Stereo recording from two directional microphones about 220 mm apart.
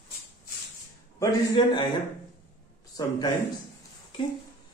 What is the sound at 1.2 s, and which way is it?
Speech, 20° left (ahead or behind).